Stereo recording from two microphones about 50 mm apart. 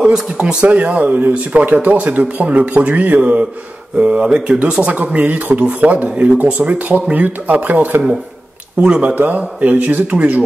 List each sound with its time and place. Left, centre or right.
0.0 s speech: centre
0.7 s speech: right